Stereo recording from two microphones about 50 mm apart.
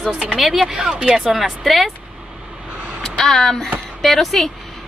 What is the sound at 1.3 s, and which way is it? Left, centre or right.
Speech, centre.